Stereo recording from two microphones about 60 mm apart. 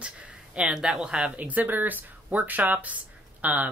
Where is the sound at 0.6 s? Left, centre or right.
Centre.